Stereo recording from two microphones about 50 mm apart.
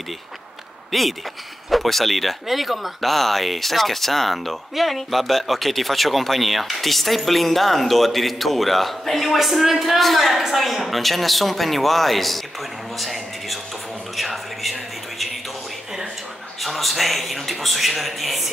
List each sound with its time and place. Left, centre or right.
0.9 s speech: centre
14.1 s a sound: centre
16.5 s speech: centre